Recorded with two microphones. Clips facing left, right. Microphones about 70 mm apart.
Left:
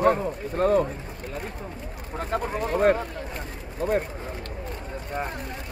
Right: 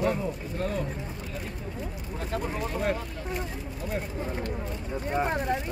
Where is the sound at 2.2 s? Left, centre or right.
Left.